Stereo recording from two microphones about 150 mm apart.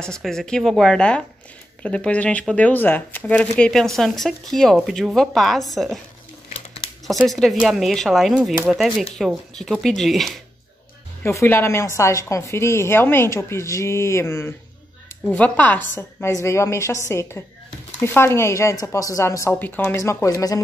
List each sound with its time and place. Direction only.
0.0 s speech: 5° left (ahead or behind)
6.5 s crumpling: 40° left (ahead or behind)
7.1 s speech: centre (ahead or behind)
11.2 s a woman's voice: 15° left (ahead or behind)